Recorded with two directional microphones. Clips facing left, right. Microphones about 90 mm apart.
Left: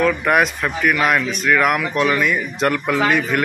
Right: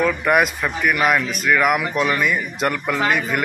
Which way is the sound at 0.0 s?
Centre (ahead or behind).